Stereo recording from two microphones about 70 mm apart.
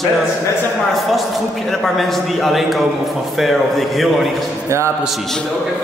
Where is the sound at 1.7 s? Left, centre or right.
Centre.